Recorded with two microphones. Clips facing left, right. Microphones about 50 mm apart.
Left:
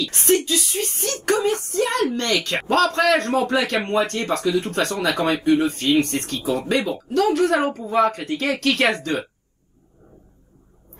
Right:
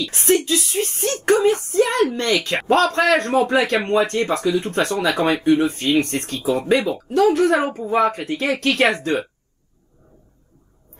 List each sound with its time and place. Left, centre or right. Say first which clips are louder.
0.2 s a woman's voice: right 2 dB; right
3.8 s speech: right 3 dB; centre
4.1 s a woman's voice: right 2 dB; right
6.4 s speech: right 4 dB; centre
6.8 s a woman's voice: right 3 dB; right